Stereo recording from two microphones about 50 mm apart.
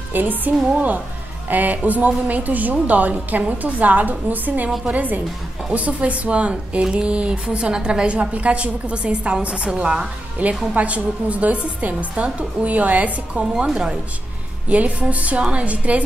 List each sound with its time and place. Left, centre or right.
0.1 s a woman's voice: right
14.7 s speech: right